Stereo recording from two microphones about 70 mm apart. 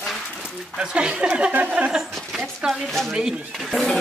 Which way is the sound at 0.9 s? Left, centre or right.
Centre.